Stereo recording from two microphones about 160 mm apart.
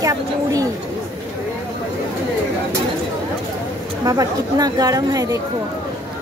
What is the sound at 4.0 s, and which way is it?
Speech, 20° right (ahead or behind).